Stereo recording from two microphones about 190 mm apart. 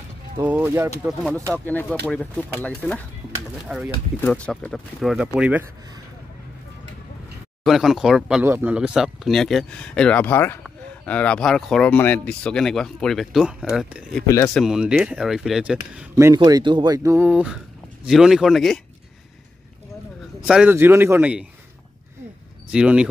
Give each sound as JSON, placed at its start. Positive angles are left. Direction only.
{"t": 0.4, "sound": "speech", "side_deg": -10}
{"t": 1.5, "sound": "speech", "side_deg": 5}
{"t": 7.6, "sound": "speech", "side_deg": 0}
{"t": 14.2, "sound": "speech", "side_deg": 15}
{"t": 14.5, "sound": "speech", "side_deg": 0}
{"t": 17.3, "sound": "speech", "side_deg": -5}
{"t": 20.4, "sound": "speech", "side_deg": -5}
{"t": 22.7, "sound": "speech", "side_deg": -5}